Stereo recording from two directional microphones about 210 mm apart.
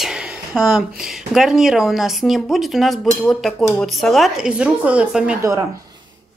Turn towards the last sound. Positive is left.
turn(degrees=-10)  # may be behind; listen again after turning